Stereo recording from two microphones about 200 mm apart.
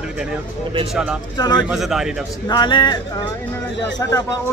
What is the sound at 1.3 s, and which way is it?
Speech, 20° left (ahead or behind).